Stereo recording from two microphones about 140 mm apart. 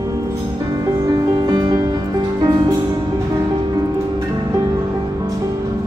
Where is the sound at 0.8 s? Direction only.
25° right (ahead or behind).